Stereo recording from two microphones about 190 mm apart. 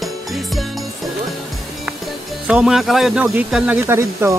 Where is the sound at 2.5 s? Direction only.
5° right (ahead or behind).